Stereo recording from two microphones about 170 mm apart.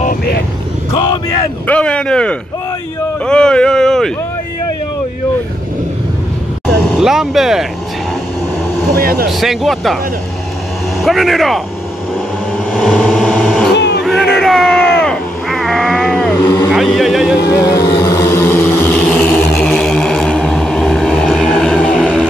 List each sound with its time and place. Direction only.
0.9 s vehicle: 25° left (ahead or behind)
1.7 s speech: 5° left (ahead or behind)
3.3 s a sound: 5° left (ahead or behind)
6.9 s speech: 5° right (ahead or behind)
8.9 s speech: 60° right (ahead or behind)
9.3 s speech: centre (ahead or behind)
11.0 s speech: centre (ahead or behind)
12.7 s vehicle: centre (ahead or behind)
14.0 s a sound: centre (ahead or behind)
16.7 s speech: centre (ahead or behind)
17.4 s vehicle: 20° left (ahead or behind); by 22.2 s 5° left (ahead or behind)